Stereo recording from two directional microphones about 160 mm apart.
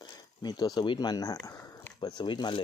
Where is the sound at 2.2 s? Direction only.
30° left (ahead or behind).